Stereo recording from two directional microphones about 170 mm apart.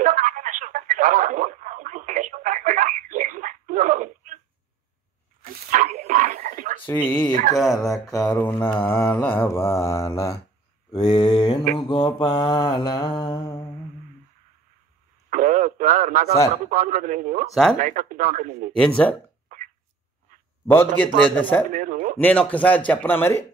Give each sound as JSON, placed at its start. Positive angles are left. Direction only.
{"t": 0.0, "sound": "telephone", "side_deg": -50}
{"t": 5.4, "sound": "dog", "side_deg": -50}
{"t": 7.5, "sound": "speech", "side_deg": 0}
{"t": 8.4, "sound": "mantra", "side_deg": 10}
{"t": 10.9, "sound": "a sound", "side_deg": 25}
{"t": 11.7, "sound": "mantra", "side_deg": 25}
{"t": 15.2, "sound": "radio", "side_deg": -50}
{"t": 16.6, "sound": "a man's voice", "side_deg": -50}
{"t": 18.8, "sound": "mantra", "side_deg": 10}
{"t": 19.5, "sound": "a sound", "side_deg": -50}
{"t": 20.6, "sound": "mantra", "side_deg": 10}
{"t": 21.7, "sound": "speech", "side_deg": -50}
{"t": 22.2, "sound": "mantra", "side_deg": 5}